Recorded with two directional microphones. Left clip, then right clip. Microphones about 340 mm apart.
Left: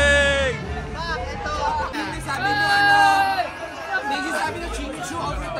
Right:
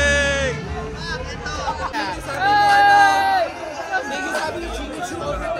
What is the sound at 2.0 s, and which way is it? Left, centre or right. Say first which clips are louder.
Music: right 3 dB; centre.